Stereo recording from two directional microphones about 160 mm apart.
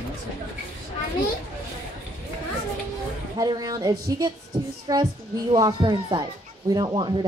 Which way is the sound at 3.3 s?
25° right (ahead or behind).